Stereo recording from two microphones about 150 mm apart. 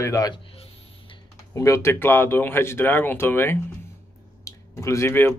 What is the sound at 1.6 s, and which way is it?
Speech, 20° left (ahead or behind).